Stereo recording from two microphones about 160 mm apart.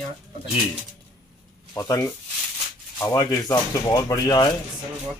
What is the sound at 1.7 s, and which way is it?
Speech, 15° left (ahead or behind).